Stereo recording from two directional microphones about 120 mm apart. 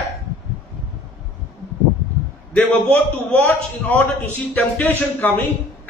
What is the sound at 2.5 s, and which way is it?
A man's voice, 10° left (ahead or behind).